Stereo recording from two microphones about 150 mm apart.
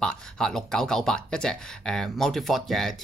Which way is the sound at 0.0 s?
5° left (ahead or behind).